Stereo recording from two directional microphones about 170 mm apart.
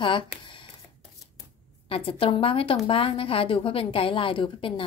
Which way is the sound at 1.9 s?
35° left (ahead or behind).